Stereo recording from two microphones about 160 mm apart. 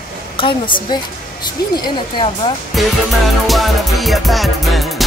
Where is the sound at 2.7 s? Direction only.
Centre (ahead or behind).